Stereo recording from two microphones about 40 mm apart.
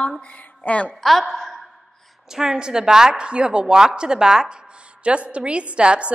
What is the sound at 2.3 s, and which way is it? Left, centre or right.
A woman's voice, centre.